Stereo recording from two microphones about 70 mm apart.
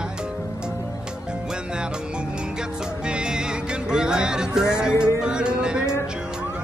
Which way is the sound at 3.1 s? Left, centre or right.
Centre.